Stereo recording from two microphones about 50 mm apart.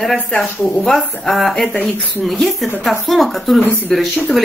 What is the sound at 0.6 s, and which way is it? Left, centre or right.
Speech, left.